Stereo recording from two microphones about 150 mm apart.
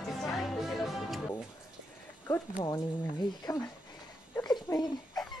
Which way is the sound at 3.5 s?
20° left (ahead or behind).